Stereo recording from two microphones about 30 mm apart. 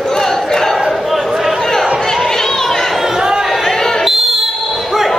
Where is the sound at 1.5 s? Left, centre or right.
Centre.